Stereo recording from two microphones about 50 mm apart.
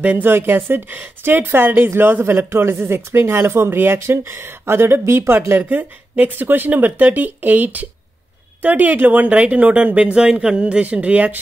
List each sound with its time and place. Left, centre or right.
0.0 s speech: right
0.3 s a woman's voice: right
2.2 s a woman's voice: right
5.5 s speech: right